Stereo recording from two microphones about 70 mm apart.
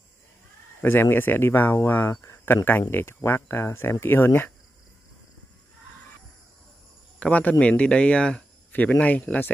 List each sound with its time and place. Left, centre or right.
0.8 s speech: left
7.2 s speech: left